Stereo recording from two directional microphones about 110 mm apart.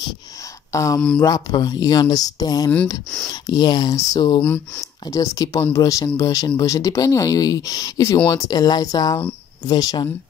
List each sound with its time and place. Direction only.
0.7 s speech: 30° left (ahead or behind)